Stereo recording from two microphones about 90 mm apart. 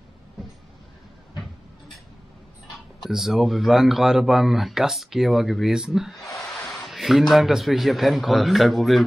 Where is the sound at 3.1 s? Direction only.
5° right (ahead or behind).